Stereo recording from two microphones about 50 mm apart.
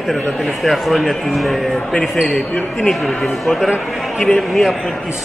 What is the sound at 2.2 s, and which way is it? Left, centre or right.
Speech, centre.